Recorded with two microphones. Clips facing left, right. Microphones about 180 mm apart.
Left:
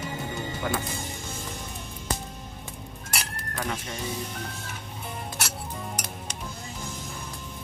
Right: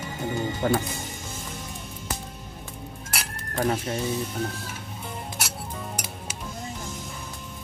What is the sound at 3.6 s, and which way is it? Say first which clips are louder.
Speech: right 8 dB; 45° right (ahead or behind).